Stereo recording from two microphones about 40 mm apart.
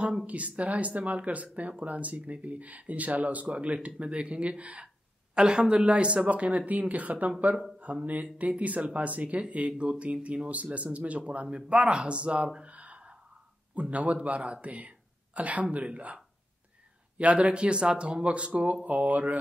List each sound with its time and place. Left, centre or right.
0.3 s speech: right
4.8 s speech: right
9.4 s speech: right
12.6 s gasp: right
13.7 s speech: right
17.2 s speech: right